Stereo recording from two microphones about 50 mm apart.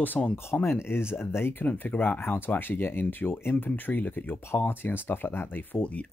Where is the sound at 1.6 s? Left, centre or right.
Left.